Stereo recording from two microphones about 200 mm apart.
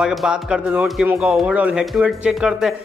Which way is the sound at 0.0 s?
Centre (ahead or behind).